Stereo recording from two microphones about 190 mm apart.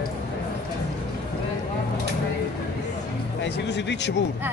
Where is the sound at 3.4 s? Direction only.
65° left (ahead or behind).